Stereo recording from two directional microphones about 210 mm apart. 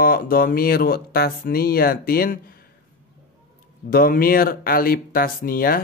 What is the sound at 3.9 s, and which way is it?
Speech, 45° left (ahead or behind).